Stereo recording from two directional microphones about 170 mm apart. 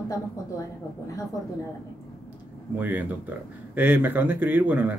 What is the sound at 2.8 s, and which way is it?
Speech, 10° right (ahead or behind).